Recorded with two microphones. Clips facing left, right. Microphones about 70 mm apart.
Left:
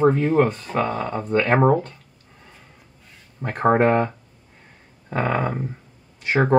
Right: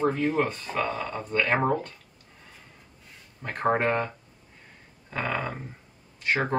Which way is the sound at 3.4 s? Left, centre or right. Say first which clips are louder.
Left 7 dB; centre.